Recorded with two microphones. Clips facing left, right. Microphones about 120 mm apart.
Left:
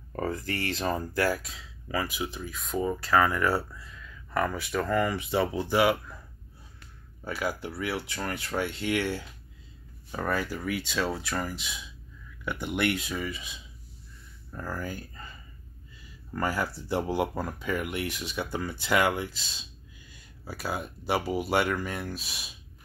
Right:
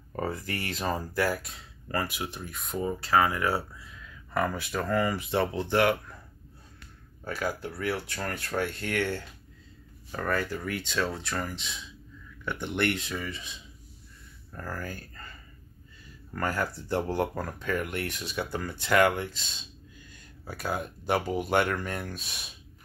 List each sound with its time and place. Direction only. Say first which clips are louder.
0.1 s a sound: left 1 dB; 5° right (ahead or behind)
0.5 s speech: left 2 dB; 10° right (ahead or behind)
1.4 s speech: left 1 dB; 90° left
2.1 s speech: left 2 dB; centre (ahead or behind)
3.2 s speech: left 1 dB; 15° right (ahead or behind); by 6.1 s 10° left (ahead or behind)
7.2 s speech: even; 5° left (ahead or behind)
16.3 s speech: left 1 dB; 5° left (ahead or behind)